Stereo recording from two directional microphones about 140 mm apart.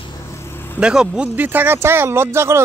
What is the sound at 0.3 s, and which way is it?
Cricket, 15° left (ahead or behind).